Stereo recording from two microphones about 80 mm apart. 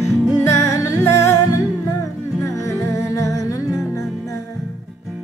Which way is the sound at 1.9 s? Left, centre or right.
Left.